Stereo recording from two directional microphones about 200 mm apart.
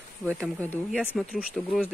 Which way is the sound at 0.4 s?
10° left (ahead or behind).